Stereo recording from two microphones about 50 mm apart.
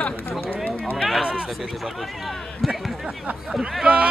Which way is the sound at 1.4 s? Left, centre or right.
Centre.